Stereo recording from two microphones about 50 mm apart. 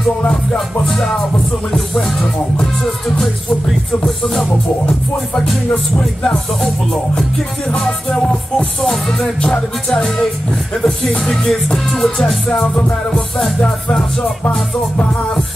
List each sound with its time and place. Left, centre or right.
0.8 s music: centre
2.5 s music: centre
8.1 s music: centre
11.4 s music: centre